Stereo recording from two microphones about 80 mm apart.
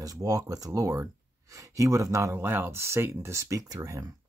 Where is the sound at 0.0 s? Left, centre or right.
Right.